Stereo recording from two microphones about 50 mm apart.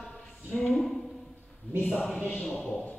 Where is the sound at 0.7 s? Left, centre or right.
Centre.